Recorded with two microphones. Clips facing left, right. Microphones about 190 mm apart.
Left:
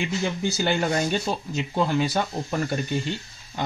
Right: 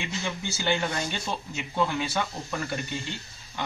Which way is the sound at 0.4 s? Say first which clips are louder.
Left 2 dB; 40° left (ahead or behind).